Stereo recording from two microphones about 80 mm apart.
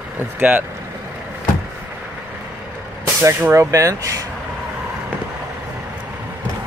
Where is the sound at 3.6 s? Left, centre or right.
Right.